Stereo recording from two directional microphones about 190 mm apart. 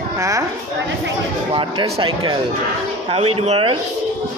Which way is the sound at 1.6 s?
30° right (ahead or behind).